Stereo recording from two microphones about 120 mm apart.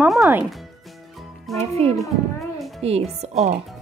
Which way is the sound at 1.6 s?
60° right (ahead or behind).